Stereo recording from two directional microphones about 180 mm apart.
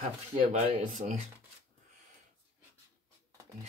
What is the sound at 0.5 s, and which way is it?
Speech, 40° right (ahead or behind).